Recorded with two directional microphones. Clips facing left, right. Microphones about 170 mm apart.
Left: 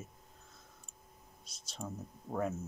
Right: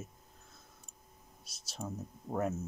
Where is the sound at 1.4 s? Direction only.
10° right (ahead or behind).